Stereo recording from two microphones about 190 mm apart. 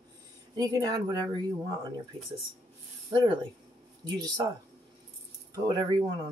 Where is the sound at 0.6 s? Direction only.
20° right (ahead or behind).